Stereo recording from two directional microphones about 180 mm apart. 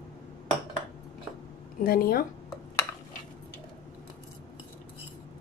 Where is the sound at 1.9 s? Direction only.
55° left (ahead or behind).